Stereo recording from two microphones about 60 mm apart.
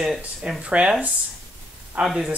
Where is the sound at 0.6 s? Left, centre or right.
Centre.